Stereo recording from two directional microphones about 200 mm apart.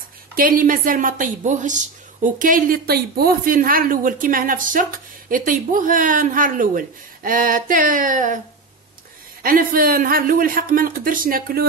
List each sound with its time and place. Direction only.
0.4 s a woman's voice: 45° right (ahead or behind)
9.4 s a woman's voice: 45° right (ahead or behind)